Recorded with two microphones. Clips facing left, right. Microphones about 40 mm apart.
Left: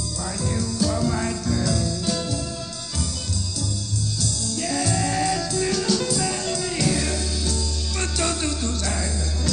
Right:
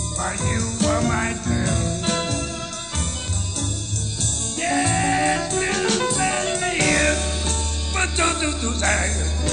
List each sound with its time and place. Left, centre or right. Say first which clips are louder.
0.2 s music: right 3 dB; right
4.2 s music: right 3 dB; right
8.8 s speech: right 6 dB; right